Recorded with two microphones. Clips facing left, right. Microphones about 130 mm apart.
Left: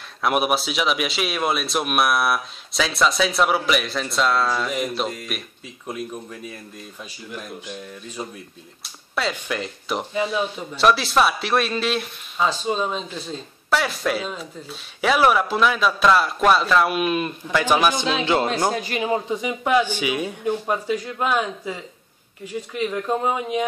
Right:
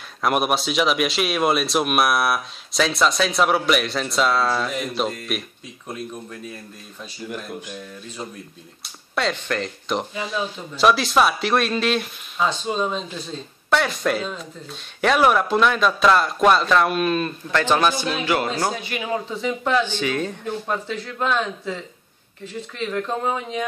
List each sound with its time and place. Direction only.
0.2 s speech: centre (ahead or behind)
9.1 s speech: 5° left (ahead or behind)
18.2 s speech: 25° left (ahead or behind)
18.7 s a man's voice: 40° left (ahead or behind)
19.0 s speech: 20° left (ahead or behind)